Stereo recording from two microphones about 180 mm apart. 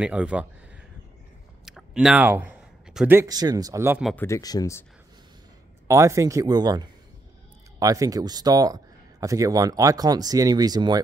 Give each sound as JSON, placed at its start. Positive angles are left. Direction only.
{"t": 0.0, "sound": "speech", "side_deg": -5}
{"t": 1.7, "sound": "a sound", "side_deg": 0}
{"t": 3.2, "sound": "speech", "side_deg": -20}
{"t": 4.0, "sound": "speech", "side_deg": 10}
{"t": 5.9, "sound": "speech", "side_deg": -15}